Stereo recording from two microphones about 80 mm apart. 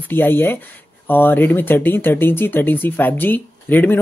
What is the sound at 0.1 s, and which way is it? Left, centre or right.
Speech, left.